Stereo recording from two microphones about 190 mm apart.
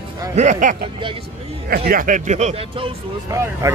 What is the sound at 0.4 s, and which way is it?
Speech, 40° right (ahead or behind).